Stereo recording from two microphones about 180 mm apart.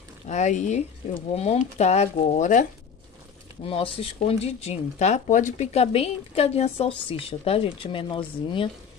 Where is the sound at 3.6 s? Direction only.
30° left (ahead or behind).